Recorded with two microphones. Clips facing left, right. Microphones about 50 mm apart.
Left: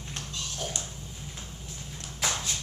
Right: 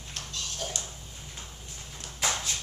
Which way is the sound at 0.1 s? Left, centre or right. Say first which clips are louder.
Even; left.